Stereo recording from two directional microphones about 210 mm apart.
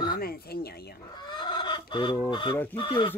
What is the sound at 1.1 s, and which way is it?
Fowl, 20° left (ahead or behind).